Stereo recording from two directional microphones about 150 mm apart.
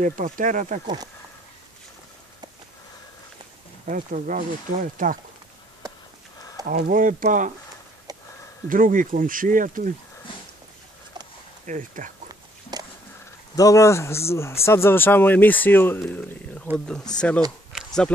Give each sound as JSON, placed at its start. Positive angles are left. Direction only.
{"t": 0.0, "sound": "speech", "side_deg": -60}
{"t": 3.8, "sound": "speech", "side_deg": -60}
{"t": 6.7, "sound": "speech", "side_deg": -65}
{"t": 8.6, "sound": "speech", "side_deg": -65}
{"t": 11.6, "sound": "speech", "side_deg": -60}
{"t": 12.7, "sound": "a sound", "side_deg": -25}
{"t": 13.6, "sound": "speech", "side_deg": 20}
{"t": 17.7, "sound": "a sound", "side_deg": 5}